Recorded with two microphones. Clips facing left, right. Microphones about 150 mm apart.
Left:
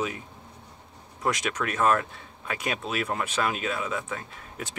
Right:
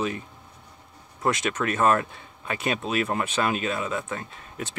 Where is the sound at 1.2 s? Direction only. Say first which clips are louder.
Right 3 dB; centre (ahead or behind).